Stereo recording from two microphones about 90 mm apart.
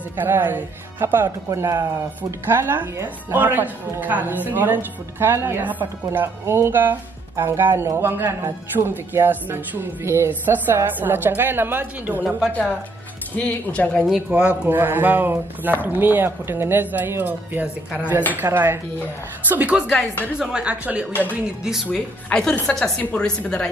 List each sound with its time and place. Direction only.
0.2 s speech: 20° right (ahead or behind)
13.4 s a woman's voice: 15° left (ahead or behind)
14.0 s a woman's voice: 10° right (ahead or behind)
21.8 s a woman's voice: 15° left (ahead or behind)